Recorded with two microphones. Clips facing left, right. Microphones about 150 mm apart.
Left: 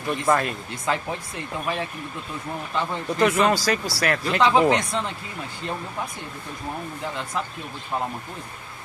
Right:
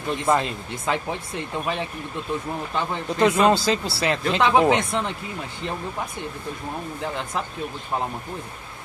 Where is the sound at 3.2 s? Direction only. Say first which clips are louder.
Right 2 dB; 20° right (ahead or behind).